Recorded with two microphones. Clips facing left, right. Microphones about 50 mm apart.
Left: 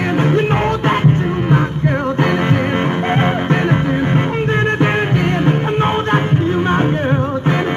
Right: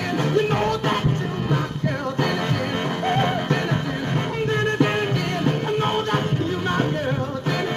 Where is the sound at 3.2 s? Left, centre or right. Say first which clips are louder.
Left 6 dB; left.